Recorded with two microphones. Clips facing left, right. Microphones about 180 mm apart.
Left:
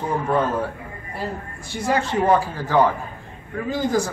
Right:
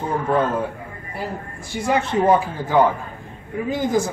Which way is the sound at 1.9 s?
15° right (ahead or behind).